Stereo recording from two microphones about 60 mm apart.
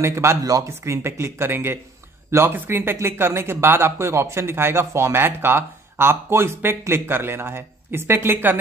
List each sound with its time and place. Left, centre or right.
0.0 s speech: right
0.4 s speech: right